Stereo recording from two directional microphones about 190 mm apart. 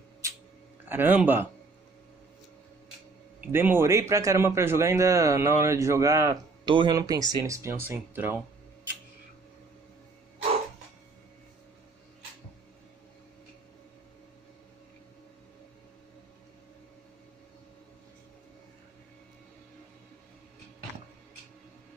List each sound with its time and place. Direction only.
0.2 s a sound: 15° right (ahead or behind)
0.8 s a man's voice: 10° right (ahead or behind)
3.5 s a man's voice: 10° right (ahead or behind)